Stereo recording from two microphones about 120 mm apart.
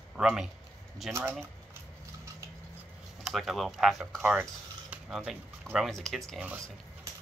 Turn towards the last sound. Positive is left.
turn(degrees=5)  # may be behind; listen again after turning